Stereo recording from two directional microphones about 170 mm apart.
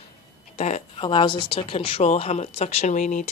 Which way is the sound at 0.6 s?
45° left (ahead or behind).